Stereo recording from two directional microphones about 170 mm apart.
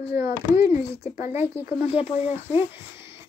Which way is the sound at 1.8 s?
35° left (ahead or behind).